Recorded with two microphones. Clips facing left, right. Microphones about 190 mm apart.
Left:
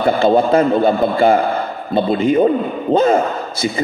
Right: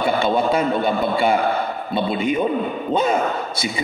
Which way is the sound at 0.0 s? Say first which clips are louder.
Left 5 dB; 45° left (ahead or behind).